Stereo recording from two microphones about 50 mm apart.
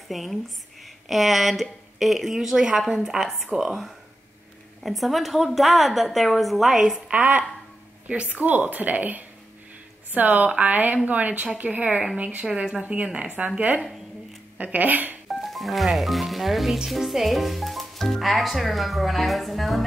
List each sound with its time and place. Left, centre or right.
0.1 s speech: centre
7.1 s a woman's voice: right
12.8 s speech: right
14.6 s a woman's voice: right
15.2 s speech: centre